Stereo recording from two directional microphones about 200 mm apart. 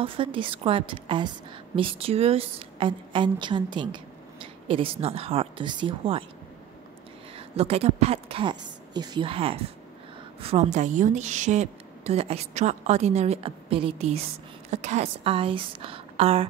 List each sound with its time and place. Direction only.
0.0 s a woman's voice: 25° right (ahead or behind)
7.3 s a woman's voice: 30° right (ahead or behind)